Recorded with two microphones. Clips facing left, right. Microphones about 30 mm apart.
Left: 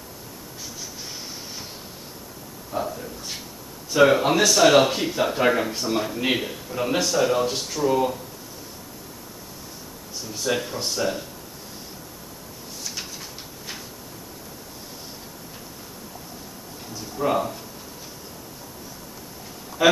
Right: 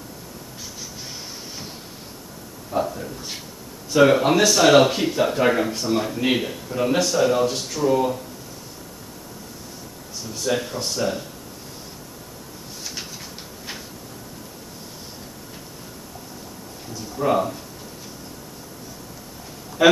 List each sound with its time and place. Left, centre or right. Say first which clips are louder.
2.7 s a sound: right 4 dB; centre
3.9 s speech: right 2 dB; centre
10.3 s speech: right 1 dB; centre
17.2 s speech: right 2 dB; centre
19.8 s quack: right 3 dB; centre